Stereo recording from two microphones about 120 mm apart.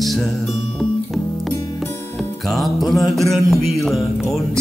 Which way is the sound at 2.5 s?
Centre (ahead or behind).